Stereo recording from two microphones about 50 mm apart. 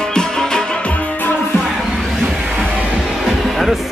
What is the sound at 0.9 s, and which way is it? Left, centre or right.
Music, left.